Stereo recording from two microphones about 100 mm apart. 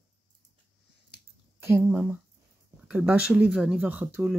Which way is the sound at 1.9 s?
15° right (ahead or behind).